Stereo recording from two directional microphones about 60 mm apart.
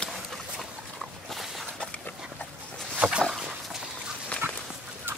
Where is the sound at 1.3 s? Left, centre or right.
Centre.